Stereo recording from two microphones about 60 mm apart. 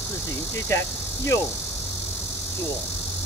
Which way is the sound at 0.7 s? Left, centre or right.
Left.